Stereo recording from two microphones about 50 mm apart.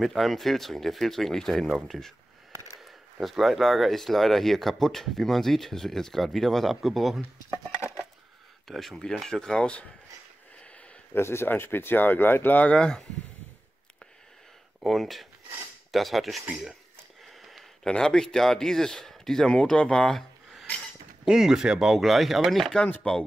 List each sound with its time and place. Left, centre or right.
0.0 s speech: centre
8.6 s speech: centre; by 9.8 s left
11.1 s speech: left
12.7 s speech: centre
14.8 s speech: centre
17.3 s a sound: centre
17.8 s speech: centre
21.3 s speech: centre
23.0 s speech: left